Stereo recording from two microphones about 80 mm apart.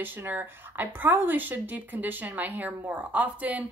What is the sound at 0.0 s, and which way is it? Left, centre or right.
Speech, right.